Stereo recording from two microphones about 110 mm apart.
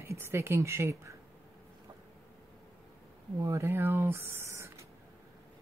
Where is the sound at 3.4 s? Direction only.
25° right (ahead or behind).